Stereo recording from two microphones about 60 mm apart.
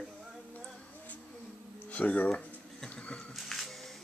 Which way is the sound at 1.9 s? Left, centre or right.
Left.